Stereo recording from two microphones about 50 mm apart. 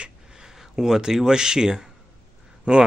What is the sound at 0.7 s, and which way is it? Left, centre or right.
Speech, centre.